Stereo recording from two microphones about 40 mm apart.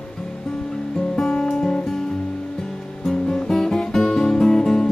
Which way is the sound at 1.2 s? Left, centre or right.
Left.